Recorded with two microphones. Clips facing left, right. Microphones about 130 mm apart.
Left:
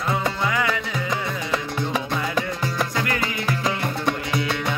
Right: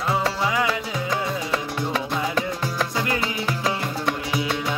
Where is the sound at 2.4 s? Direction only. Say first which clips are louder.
Even; 5° right (ahead or behind).